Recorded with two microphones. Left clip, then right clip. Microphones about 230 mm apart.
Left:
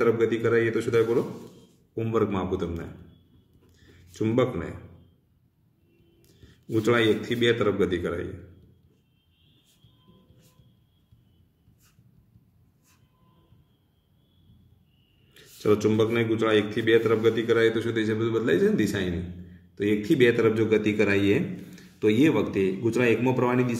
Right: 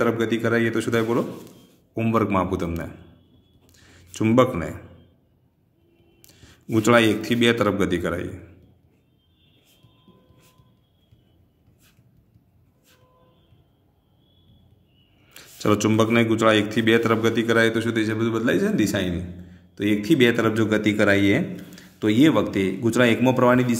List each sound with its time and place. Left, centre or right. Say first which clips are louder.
0.0 s a man's voice: even; right
6.2 s a sound: right 5 dB; right
7.2 s a man's voice: right 4 dB; right
15.3 s a man's voice: right 1 dB; right